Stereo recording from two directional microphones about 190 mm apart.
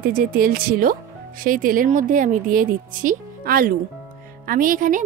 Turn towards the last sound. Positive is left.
turn(degrees=-45)  # may be behind; listen again after turning